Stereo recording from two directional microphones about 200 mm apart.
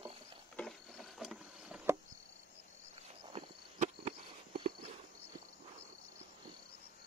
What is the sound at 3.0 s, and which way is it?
Walk, 30° right (ahead or behind).